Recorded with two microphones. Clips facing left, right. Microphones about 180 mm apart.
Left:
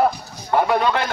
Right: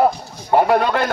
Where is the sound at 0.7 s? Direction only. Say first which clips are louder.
Right 2 dB; 50° right (ahead or behind).